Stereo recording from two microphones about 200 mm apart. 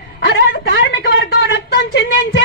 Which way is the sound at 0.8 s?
70° left (ahead or behind).